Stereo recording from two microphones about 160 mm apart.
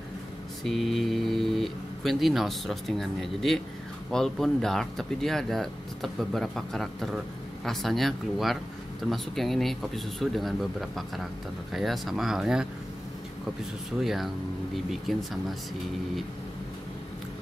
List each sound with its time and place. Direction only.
0.7 s speech: centre (ahead or behind)
14.0 s speech: centre (ahead or behind)